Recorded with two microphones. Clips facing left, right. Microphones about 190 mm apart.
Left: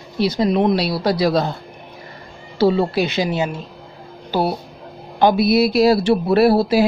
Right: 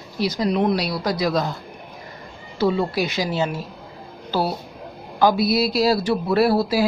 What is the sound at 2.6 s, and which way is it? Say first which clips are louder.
Speech: left 4 dB; 30° left (ahead or behind).